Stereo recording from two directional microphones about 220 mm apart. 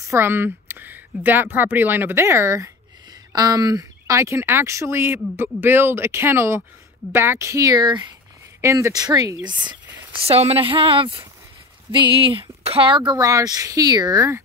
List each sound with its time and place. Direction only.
0.0 s speech: 10° right (ahead or behind)